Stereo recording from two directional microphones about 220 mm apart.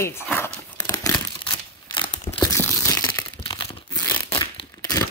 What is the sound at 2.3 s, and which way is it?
Tearing, 10° left (ahead or behind).